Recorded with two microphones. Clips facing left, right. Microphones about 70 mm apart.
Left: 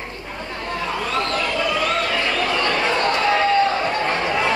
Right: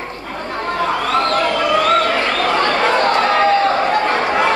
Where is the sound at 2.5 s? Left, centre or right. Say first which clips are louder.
Right 7 dB; right.